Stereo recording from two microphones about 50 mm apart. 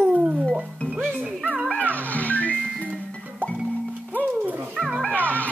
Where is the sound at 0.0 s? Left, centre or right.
Right.